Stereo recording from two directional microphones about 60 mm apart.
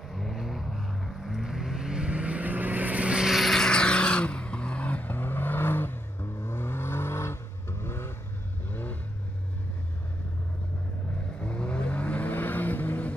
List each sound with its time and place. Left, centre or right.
0.1 s vehicle: centre; by 3.2 s right
3.2 s vehicle: centre; by 8.1 s left
11.4 s vehicle: centre